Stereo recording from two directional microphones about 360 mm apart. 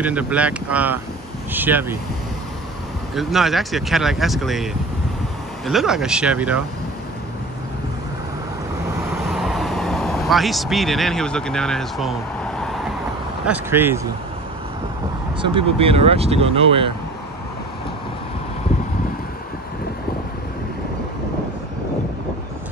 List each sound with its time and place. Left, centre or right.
0.0 s speech: centre
3.2 s speech: centre
5.7 s speech: centre
9.3 s speech: centre
15.4 s speech: centre